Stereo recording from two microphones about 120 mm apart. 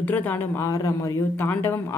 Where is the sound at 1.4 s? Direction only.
15° left (ahead or behind).